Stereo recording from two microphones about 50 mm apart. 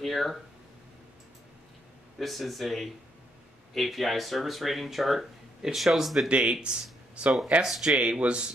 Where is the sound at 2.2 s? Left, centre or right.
Centre.